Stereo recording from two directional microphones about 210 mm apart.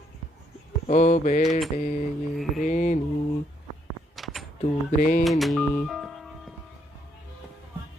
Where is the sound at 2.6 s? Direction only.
35° left (ahead or behind).